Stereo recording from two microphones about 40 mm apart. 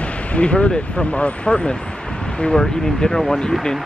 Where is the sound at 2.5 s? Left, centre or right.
Centre.